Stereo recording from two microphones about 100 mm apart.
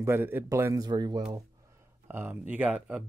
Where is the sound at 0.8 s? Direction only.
40° right (ahead or behind).